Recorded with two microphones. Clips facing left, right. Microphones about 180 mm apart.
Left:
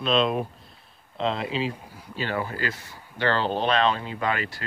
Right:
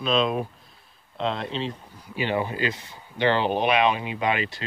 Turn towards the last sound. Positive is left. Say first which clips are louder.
# right 2 dB
turn(degrees=-20)  # may be behind; listen again after turning